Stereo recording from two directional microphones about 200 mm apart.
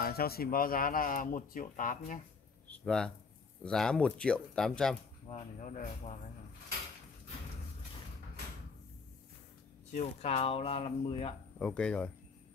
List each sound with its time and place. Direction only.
0.0 s speech: 50° left (ahead or behind)
2.7 s a sound: 5° left (ahead or behind)
3.6 s speech: 5° left (ahead or behind)
5.3 s speech: 35° left (ahead or behind)
9.9 s speech: 35° left (ahead or behind)
11.6 s speech: 5° left (ahead or behind)